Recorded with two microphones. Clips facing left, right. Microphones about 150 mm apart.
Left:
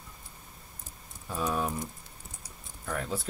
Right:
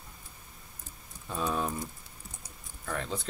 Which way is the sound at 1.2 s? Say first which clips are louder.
Left 1 dB; centre (ahead or behind).